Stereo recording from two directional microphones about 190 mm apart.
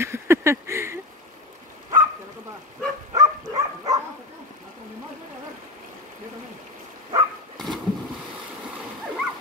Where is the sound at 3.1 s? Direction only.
20° right (ahead or behind).